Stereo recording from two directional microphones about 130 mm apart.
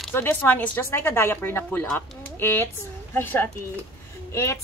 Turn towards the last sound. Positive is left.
turn(degrees=20)  # may be behind; listen again after turning